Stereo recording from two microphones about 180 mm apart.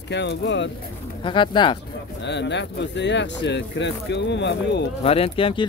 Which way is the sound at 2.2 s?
75° left (ahead or behind).